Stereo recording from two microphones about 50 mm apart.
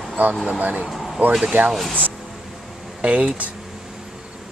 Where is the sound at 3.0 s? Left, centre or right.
Right.